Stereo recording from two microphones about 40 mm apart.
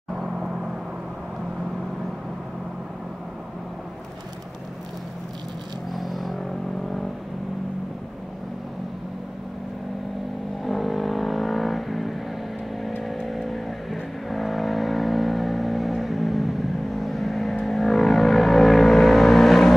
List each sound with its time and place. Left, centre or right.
0.1 s vehicle: centre
5.9 s a sound: centre
10.6 s vehicle: centre
13.3 s vehicle: centre